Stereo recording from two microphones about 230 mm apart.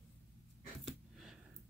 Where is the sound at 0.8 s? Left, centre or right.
Centre.